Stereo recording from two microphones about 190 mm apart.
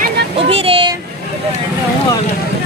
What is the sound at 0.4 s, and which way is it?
Child singing, 30° right (ahead or behind).